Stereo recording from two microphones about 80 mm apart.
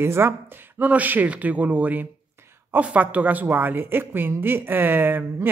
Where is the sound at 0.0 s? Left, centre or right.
Right.